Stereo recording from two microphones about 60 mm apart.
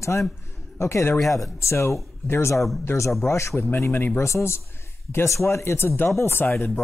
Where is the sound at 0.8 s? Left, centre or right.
Left.